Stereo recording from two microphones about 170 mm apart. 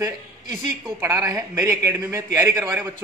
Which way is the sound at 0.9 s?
15° right (ahead or behind).